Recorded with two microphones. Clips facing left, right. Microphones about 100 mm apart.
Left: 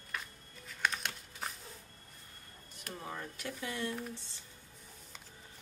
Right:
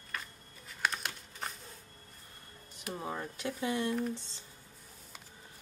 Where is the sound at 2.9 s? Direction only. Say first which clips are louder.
Right 4 dB; 20° right (ahead or behind).